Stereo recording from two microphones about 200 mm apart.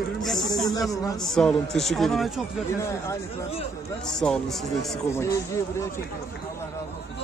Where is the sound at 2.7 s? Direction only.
15° left (ahead or behind).